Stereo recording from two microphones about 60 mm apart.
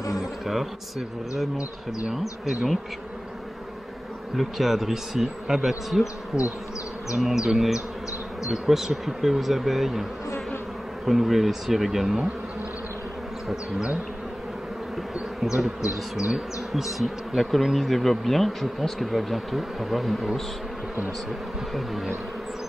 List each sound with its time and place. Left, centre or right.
0.5 s bee: centre
2.4 s speech: centre
4.4 s bee: centre
6.3 s speech: centre
7.2 s speech: centre
8.5 s bee: centre
11.1 s bee: centre
15.1 s bee: centre
21.7 s bee: centre